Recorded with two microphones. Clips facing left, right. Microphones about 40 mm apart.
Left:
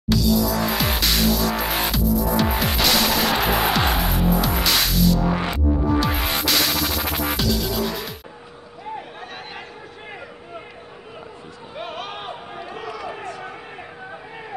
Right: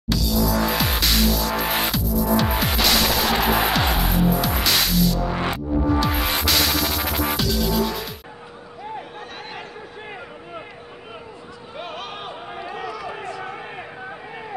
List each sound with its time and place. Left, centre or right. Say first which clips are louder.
0.1 s music: left 2 dB; centre
5.4 s music: even; centre
5.9 s music: right 2 dB; centre
11.7 s a sound: left 1 dB; centre
12.5 s run: right 4 dB; centre